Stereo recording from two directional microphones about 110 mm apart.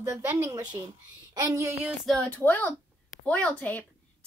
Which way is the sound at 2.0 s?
10° left (ahead or behind).